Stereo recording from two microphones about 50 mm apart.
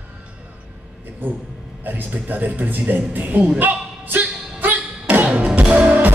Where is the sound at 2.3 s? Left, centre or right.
Right.